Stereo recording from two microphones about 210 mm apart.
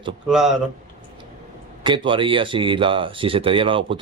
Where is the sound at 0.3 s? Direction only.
Centre (ahead or behind).